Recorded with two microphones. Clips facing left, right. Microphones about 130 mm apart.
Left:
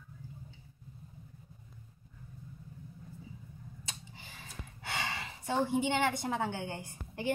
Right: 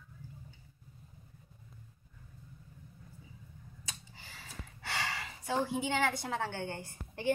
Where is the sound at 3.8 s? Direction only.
20° left (ahead or behind).